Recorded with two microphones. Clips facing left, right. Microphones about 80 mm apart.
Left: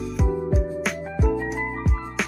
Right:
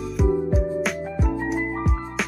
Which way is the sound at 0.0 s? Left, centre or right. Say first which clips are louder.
Right 3 dB; centre.